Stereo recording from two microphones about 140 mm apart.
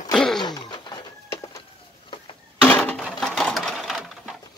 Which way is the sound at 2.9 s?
Centre (ahead or behind).